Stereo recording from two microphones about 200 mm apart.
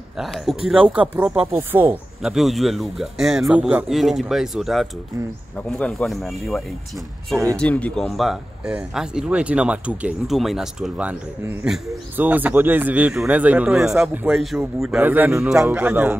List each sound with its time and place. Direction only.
0.2 s speech: centre (ahead or behind)